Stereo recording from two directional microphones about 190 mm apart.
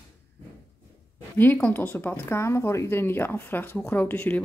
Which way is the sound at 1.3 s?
10° left (ahead or behind).